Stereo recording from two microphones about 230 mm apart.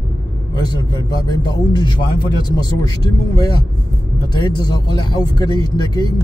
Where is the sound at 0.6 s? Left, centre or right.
Centre.